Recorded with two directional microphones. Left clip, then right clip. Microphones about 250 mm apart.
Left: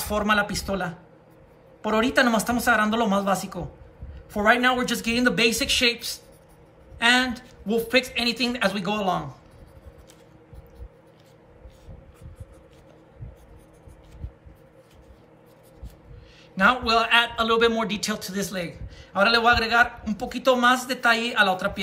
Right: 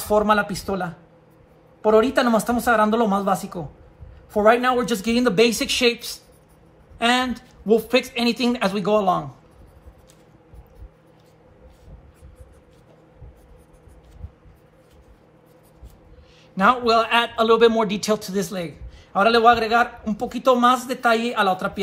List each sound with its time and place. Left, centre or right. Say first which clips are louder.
0.0 s a man's voice: right 4 dB; centre
4.9 s a man's voice: right 4 dB; centre
16.5 s a man's voice: right 3 dB; centre